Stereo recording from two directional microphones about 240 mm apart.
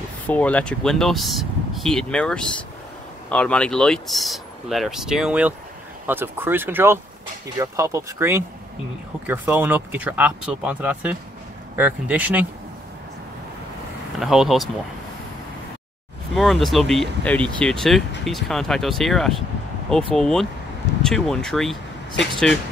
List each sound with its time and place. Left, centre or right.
0.3 s speech: centre
14.2 s speech: centre
16.3 s speech: centre